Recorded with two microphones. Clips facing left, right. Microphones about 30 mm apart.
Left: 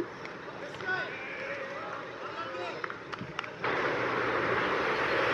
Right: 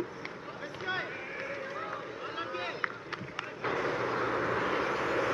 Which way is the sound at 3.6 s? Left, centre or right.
Left.